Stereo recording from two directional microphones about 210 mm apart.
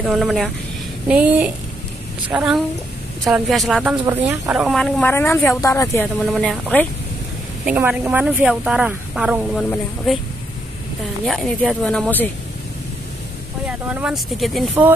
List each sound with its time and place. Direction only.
0.1 s speech: centre (ahead or behind)
6.3 s speech: centre (ahead or behind)
7.6 s speech: 5° right (ahead or behind)
11.2 s speech: centre (ahead or behind)
13.7 s speech: 5° right (ahead or behind)